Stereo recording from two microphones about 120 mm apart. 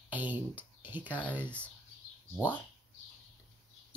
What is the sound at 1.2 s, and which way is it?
Speech, 10° left (ahead or behind).